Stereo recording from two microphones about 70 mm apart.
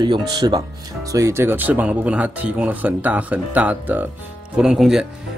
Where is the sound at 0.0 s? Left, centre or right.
Right.